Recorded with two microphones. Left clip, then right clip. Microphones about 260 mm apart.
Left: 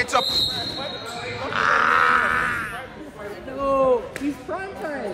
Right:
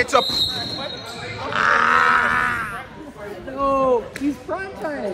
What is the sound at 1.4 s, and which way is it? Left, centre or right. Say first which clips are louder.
Sheep: right 2 dB; right.